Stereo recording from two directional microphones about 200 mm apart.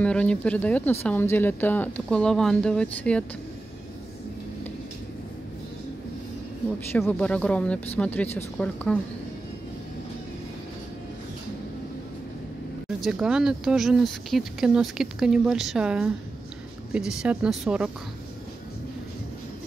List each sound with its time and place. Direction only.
0.0 s speech: 5° left (ahead or behind)
6.9 s speech: 10° left (ahead or behind)
13.0 s speech: 5° right (ahead or behind)